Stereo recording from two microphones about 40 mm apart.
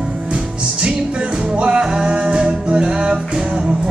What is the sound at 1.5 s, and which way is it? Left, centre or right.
Music, right.